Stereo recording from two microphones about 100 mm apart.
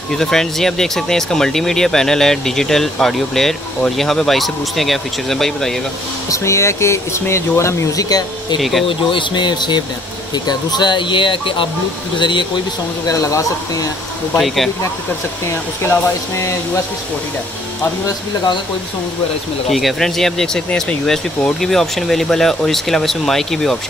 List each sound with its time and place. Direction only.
0.1 s speech: 5° left (ahead or behind)
6.3 s speech: 30° left (ahead or behind)
8.5 s speech: centre (ahead or behind)
8.8 s speech: 55° left (ahead or behind)
13.1 s speech: 35° left (ahead or behind)
14.4 s speech: centre (ahead or behind)
15.4 s speech: 25° left (ahead or behind)
19.7 s speech: centre (ahead or behind)